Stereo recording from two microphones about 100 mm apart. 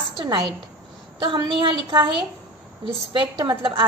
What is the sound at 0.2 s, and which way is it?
A woman's voice, 50° right (ahead or behind).